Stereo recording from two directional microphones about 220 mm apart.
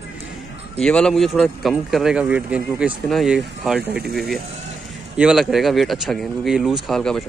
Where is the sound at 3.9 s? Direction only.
45° right (ahead or behind).